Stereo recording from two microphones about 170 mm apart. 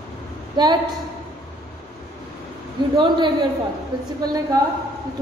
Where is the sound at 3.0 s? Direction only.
25° right (ahead or behind).